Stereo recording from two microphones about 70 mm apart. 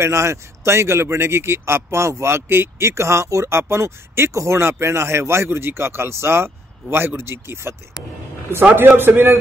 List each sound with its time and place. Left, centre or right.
0.0 s speech: right
8.9 s speech: right